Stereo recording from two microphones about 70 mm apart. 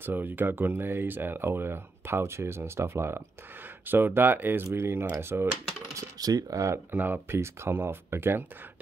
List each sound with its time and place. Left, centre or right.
0.0 s speech: right
6.1 s speech: right
6.9 s speech: right